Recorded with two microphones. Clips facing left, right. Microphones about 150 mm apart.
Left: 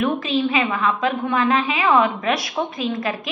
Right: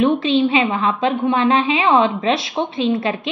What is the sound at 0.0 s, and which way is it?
A woman's voice, 30° right (ahead or behind).